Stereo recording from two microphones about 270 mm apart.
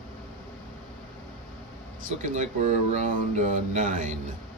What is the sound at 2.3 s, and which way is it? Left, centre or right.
Speech, right.